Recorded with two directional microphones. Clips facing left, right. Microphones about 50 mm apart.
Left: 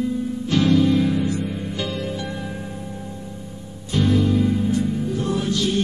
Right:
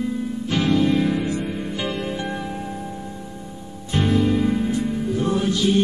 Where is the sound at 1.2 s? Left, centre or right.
Right.